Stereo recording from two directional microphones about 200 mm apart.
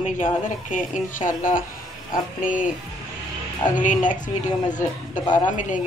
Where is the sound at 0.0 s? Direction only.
40° left (ahead or behind).